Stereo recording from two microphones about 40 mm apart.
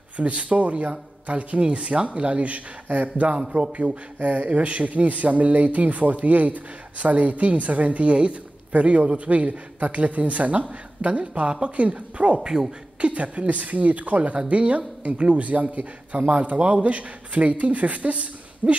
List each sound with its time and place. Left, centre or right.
0.2 s speech: right
3.3 s a man's voice: right
3.7 s a man's voice: right